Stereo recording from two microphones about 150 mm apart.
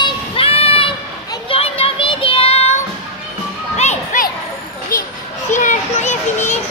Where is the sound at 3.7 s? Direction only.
50° left (ahead or behind).